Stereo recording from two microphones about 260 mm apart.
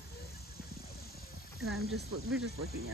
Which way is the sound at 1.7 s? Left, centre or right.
Right.